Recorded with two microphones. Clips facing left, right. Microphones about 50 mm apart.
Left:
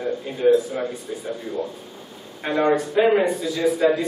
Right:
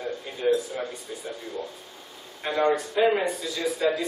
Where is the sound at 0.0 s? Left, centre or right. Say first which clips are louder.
Left 7 dB; left.